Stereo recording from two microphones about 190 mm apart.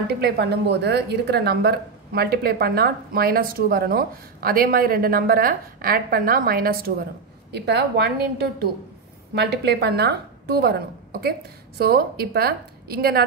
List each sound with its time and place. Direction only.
0.1 s a woman's voice: 60° right (ahead or behind)